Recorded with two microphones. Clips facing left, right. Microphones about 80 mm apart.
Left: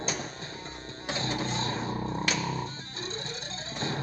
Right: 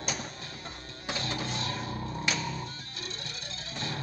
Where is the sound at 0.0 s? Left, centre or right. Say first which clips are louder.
Left 2 dB; left.